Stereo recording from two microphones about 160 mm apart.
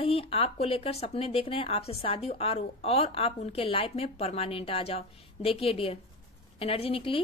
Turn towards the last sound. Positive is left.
turn(degrees=35)  # may be behind; listen again after turning